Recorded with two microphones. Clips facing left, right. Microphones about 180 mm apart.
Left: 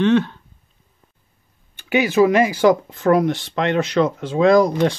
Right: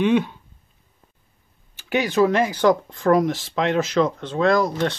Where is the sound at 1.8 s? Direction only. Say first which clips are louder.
Left 3 dB; 5° left (ahead or behind).